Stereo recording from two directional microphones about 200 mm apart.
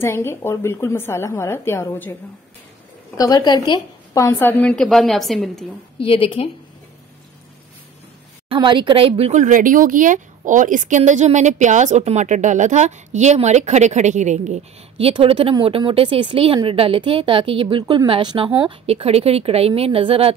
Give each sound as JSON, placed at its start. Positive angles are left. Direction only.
{"t": 0.0, "sound": "a woman's voice", "side_deg": 10}
{"t": 3.2, "sound": "a woman's voice", "side_deg": 20}
{"t": 5.9, "sound": "a woman's voice", "side_deg": 25}
{"t": 8.5, "sound": "a woman's voice", "side_deg": -25}